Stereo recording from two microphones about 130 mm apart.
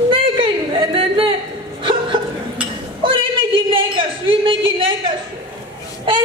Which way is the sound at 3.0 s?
40° right (ahead or behind).